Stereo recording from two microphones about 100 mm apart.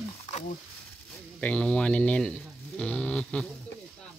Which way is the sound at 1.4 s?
10° left (ahead or behind).